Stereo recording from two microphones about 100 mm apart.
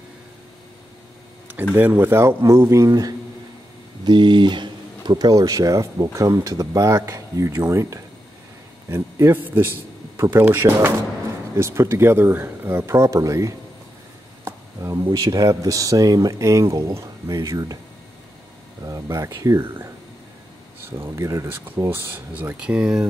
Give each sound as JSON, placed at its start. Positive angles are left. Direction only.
{"t": 1.5, "sound": "speech", "side_deg": -20}
{"t": 2.9, "sound": "speech", "side_deg": -40}
{"t": 14.4, "sound": "a sound", "side_deg": -30}
{"t": 15.0, "sound": "speech", "side_deg": -40}
{"t": 18.9, "sound": "speech", "side_deg": -40}
{"t": 21.0, "sound": "speech", "side_deg": -30}